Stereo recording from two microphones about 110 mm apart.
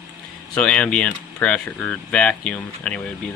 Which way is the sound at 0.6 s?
10° left (ahead or behind).